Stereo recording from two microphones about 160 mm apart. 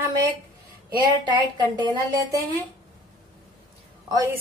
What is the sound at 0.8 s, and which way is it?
A woman's voice, 25° right (ahead or behind).